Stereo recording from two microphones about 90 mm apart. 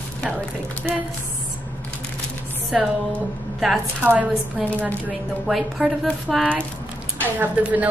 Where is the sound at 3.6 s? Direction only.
Centre (ahead or behind).